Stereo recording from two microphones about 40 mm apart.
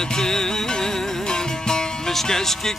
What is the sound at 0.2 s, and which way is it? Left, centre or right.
Music, centre.